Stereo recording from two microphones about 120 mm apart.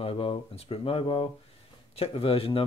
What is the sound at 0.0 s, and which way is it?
Speech, 50° left (ahead or behind).